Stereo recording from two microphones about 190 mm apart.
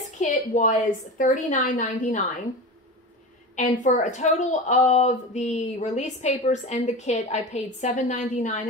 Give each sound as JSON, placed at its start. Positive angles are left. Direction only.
{"t": 0.2, "sound": "a woman's voice", "side_deg": 40}
{"t": 3.5, "sound": "a woman's voice", "side_deg": 40}